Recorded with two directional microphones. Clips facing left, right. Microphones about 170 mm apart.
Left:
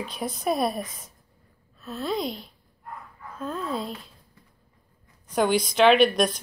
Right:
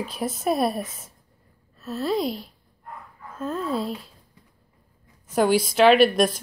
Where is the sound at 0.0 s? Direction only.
5° right (ahead or behind).